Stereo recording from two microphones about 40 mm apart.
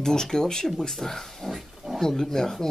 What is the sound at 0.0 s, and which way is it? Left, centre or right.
Speech, centre.